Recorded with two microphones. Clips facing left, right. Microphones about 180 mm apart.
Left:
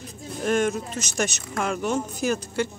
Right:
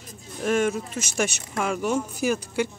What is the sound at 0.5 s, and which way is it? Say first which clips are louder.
Speech: even; 5° right (ahead or behind).